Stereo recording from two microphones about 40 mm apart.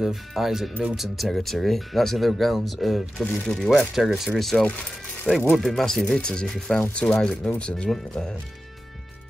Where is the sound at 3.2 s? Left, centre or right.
Centre.